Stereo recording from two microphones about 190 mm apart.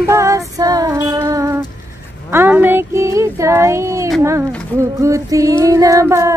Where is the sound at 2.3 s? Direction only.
10° right (ahead or behind).